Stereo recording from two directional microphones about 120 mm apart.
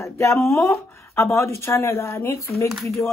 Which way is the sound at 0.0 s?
25° left (ahead or behind).